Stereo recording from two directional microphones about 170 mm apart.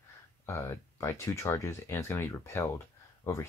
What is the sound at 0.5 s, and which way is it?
Speech, 15° left (ahead or behind).